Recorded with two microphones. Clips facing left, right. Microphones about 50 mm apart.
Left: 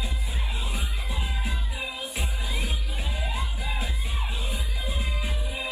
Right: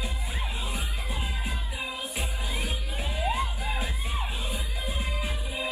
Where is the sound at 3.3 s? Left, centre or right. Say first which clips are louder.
Right 3 dB; right.